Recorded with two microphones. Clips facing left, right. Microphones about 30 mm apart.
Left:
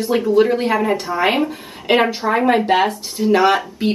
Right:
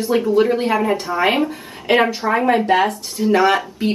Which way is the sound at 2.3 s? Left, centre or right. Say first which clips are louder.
Left 1 dB; centre.